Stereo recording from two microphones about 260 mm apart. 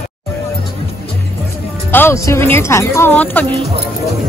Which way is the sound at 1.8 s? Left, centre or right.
Centre.